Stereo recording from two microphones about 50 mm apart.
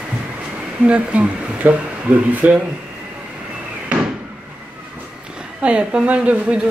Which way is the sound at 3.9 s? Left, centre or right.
Right.